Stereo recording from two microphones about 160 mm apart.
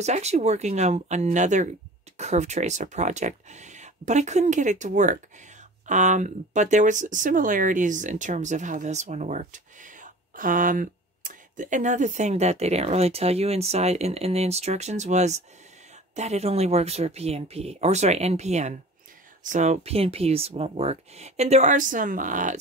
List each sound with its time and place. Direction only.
0.0 s speech: 45° right (ahead or behind)